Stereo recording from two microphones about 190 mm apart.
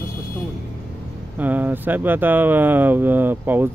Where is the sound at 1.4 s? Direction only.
10° right (ahead or behind).